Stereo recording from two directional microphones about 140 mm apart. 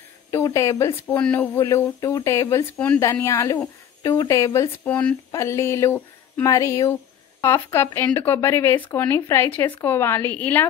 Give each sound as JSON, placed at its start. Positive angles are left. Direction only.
{"t": 0.3, "sound": "a woman's voice", "side_deg": 20}